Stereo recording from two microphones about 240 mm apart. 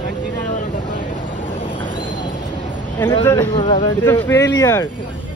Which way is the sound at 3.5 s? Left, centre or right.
Left.